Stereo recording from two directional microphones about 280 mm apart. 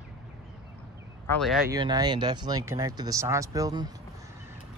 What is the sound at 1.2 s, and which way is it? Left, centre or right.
Speech, centre.